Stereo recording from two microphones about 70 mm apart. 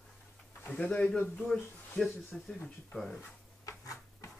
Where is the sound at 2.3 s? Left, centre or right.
Centre.